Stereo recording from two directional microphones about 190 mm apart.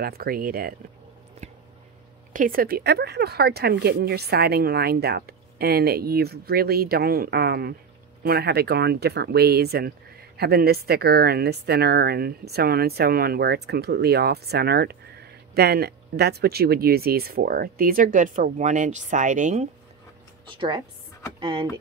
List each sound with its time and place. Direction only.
0.0 s speech: 50° right (ahead or behind)
2.3 s speech: 45° right (ahead or behind)
20.5 s a woman's voice: 25° right (ahead or behind)